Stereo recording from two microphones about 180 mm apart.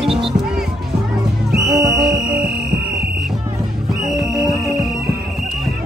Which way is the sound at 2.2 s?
5° right (ahead or behind).